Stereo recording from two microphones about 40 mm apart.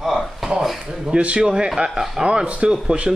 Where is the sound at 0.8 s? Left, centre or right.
Centre.